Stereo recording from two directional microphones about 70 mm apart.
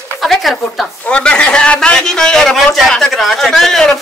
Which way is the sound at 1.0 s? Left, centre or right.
Centre.